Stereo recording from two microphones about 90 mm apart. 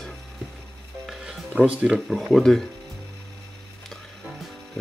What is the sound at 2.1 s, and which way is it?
Speech, centre (ahead or behind).